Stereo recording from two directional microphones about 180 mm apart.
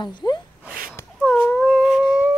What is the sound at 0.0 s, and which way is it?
Speech, 25° left (ahead or behind).